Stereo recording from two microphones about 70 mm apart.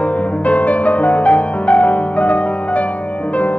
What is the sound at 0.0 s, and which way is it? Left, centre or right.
Music, centre.